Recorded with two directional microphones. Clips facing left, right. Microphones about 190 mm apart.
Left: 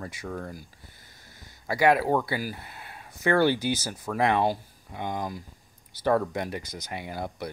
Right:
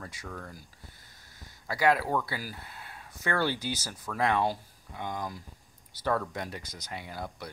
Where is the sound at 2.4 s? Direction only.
10° left (ahead or behind).